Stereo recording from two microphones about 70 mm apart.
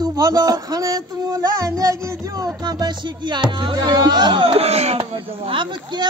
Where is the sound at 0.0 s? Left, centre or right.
Right.